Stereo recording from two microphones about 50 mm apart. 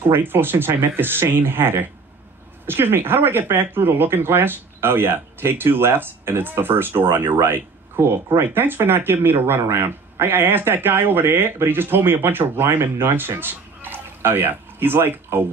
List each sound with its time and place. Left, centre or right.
0.0 s speech: right